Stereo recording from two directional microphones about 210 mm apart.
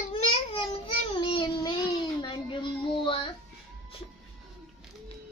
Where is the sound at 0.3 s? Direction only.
25° left (ahead or behind).